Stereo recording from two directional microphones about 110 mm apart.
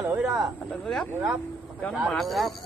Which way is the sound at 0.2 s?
Centre (ahead or behind).